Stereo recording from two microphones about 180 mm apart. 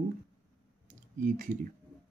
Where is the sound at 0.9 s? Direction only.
45° right (ahead or behind).